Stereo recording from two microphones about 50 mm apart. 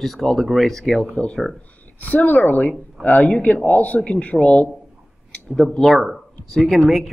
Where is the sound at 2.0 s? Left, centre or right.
Left.